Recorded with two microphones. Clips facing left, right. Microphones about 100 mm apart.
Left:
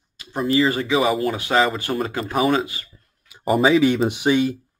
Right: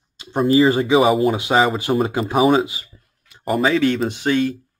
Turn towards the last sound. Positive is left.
turn(degrees=15)  # may be behind; listen again after turning